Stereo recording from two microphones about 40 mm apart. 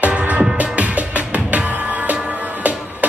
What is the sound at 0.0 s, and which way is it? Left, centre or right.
Music, right.